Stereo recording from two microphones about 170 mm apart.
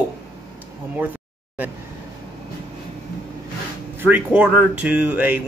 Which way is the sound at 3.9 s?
10° right (ahead or behind).